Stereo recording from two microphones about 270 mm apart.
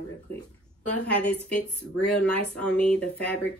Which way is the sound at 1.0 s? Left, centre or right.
Centre.